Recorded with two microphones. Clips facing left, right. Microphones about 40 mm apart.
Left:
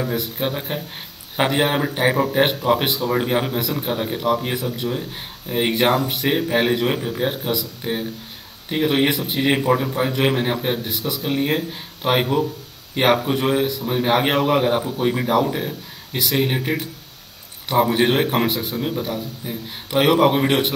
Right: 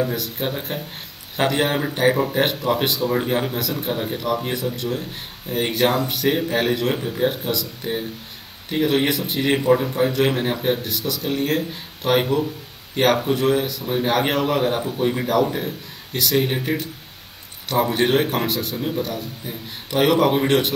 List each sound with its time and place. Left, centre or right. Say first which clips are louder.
0.0 s speech: even; centre